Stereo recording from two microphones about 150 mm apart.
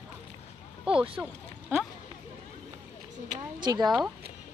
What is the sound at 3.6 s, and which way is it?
Speech, 25° right (ahead or behind).